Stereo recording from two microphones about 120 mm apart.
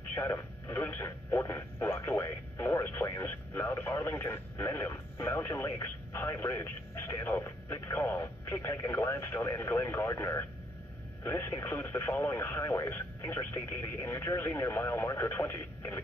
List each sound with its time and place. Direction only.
0.1 s speech: 20° left (ahead or behind)